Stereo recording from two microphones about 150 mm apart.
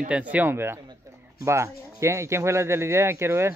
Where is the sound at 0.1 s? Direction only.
10° right (ahead or behind).